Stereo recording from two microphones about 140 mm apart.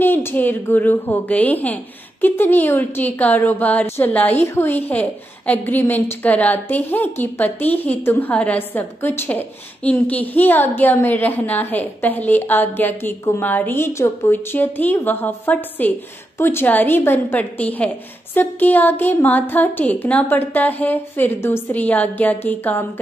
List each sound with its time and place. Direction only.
0.0 s a woman's voice: 15° left (ahead or behind)